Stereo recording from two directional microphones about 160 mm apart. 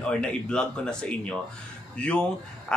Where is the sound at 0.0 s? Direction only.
5° left (ahead or behind).